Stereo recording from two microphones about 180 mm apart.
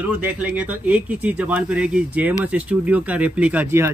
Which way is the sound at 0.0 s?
10° right (ahead or behind).